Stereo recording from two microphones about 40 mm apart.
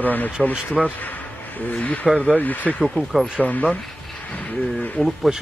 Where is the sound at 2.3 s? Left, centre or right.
Left.